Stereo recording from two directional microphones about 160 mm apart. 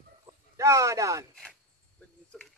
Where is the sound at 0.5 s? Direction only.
20° right (ahead or behind).